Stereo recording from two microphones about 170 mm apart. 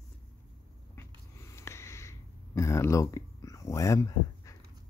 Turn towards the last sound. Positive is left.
turn(degrees=20)  # may be behind; listen again after turning